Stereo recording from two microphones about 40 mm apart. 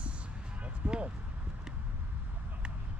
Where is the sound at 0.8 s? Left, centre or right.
Right.